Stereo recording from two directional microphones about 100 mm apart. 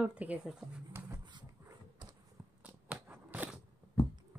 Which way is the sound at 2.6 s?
10° right (ahead or behind).